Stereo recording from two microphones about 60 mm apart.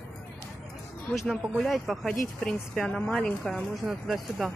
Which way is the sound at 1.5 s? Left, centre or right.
Centre.